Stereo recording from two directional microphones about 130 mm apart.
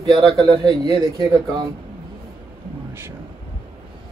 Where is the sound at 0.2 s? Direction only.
25° right (ahead or behind).